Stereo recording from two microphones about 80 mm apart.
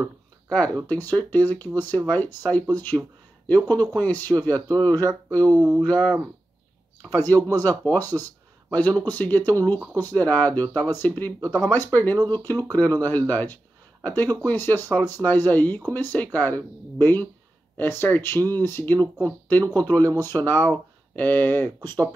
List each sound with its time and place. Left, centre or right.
0.8 s speech: left
7.0 s speech: left